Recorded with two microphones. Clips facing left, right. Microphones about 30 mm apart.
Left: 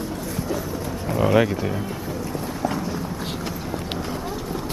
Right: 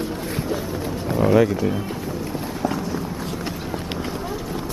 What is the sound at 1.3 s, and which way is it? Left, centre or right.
Speech, centre.